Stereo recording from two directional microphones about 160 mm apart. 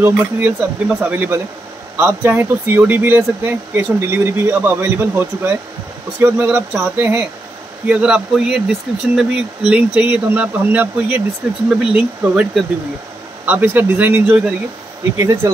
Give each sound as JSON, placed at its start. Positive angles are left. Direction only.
{"t": 0.0, "sound": "speech", "side_deg": -10}